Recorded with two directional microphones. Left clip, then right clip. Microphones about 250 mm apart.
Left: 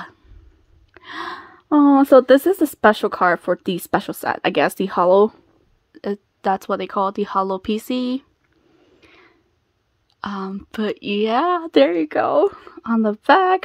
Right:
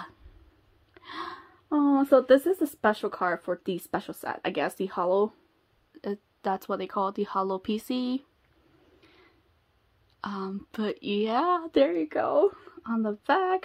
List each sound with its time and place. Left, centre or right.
0.9 s a woman's voice: left
5.9 s a woman's voice: left
9.0 s a sound: left
10.2 s speech: left